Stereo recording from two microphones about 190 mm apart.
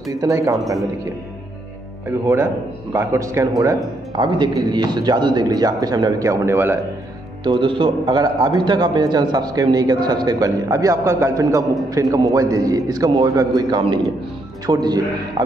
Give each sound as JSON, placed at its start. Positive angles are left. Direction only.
{"t": 0.1, "sound": "speech", "side_deg": -15}
{"t": 2.0, "sound": "a man's voice", "side_deg": -15}
{"t": 7.6, "sound": "a man's voice", "side_deg": -25}